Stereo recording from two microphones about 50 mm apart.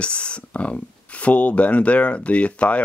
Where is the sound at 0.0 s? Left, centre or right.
Left.